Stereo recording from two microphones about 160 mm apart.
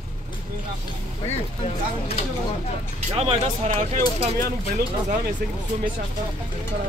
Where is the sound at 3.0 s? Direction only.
40° right (ahead or behind).